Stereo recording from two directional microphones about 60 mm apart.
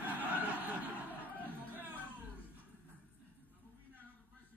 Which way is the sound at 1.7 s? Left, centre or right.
Right.